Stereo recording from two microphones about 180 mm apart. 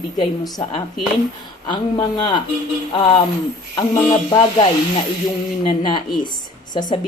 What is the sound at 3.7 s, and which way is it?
A woman's voice, 25° left (ahead or behind).